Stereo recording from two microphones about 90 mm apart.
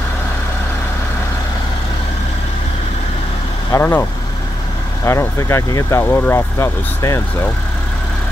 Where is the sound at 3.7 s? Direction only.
25° left (ahead or behind).